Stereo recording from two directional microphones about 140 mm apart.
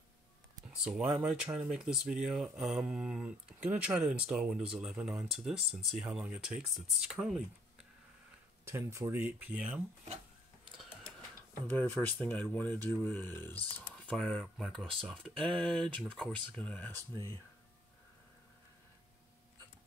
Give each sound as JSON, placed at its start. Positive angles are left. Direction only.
{"t": 0.7, "sound": "speech", "side_deg": -10}
{"t": 8.6, "sound": "speech", "side_deg": -20}
{"t": 11.7, "sound": "speech", "side_deg": 15}